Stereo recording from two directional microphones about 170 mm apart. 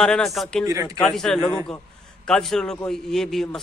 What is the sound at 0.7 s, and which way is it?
Speech, 20° right (ahead or behind).